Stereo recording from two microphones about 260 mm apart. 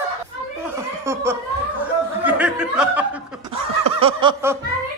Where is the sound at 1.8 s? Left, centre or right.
Centre.